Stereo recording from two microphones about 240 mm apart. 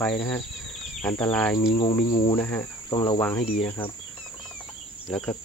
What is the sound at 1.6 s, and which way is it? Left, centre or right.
Cricket, left.